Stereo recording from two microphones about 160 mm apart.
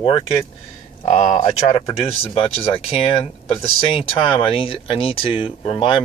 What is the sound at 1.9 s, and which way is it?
Speech, 35° left (ahead or behind).